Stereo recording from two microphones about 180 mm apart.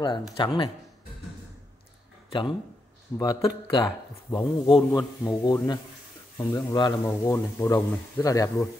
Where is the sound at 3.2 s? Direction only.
20° left (ahead or behind).